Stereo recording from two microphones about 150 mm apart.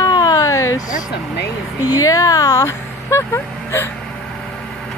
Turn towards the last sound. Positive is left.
turn(degrees=15)  # may be behind; listen again after turning